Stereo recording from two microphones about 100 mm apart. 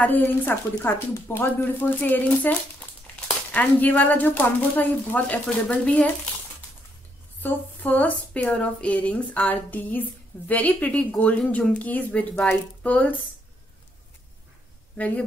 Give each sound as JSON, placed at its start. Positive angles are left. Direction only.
{"t": 0.0, "sound": "speech", "side_deg": 20}
{"t": 7.4, "sound": "speech", "side_deg": 15}
{"t": 15.0, "sound": "speech", "side_deg": 15}